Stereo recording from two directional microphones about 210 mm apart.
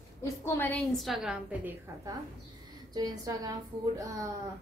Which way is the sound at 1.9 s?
15° right (ahead or behind).